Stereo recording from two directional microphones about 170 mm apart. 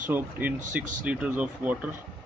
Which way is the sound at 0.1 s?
10° right (ahead or behind).